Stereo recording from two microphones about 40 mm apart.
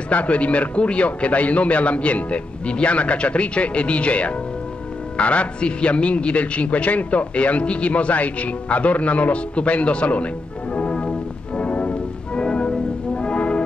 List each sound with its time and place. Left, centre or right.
0.1 s a man's voice: left
13.2 s music: left